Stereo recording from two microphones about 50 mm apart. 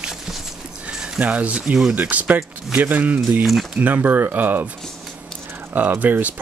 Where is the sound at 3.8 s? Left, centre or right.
Right.